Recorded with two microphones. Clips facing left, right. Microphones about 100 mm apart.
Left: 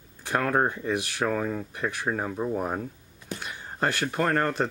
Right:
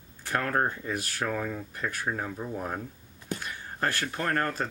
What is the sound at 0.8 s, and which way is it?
Speech, 35° left (ahead or behind).